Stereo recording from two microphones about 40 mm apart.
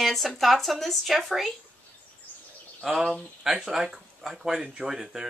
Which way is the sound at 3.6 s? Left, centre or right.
Centre.